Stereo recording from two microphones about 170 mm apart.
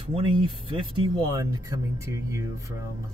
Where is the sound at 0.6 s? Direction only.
30° right (ahead or behind).